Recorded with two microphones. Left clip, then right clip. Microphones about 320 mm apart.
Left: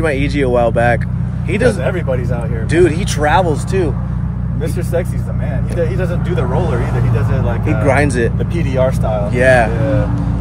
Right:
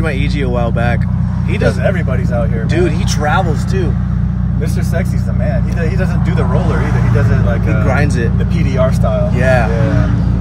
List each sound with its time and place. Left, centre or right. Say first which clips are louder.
0.0 s speech: left 3 dB; left
2.7 s speech: left 5 dB; left
7.8 s speech: left 6 dB; left
9.4 s speech: left 4 dB; left